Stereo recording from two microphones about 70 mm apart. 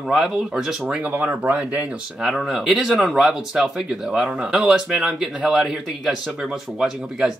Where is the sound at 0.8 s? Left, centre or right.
Centre.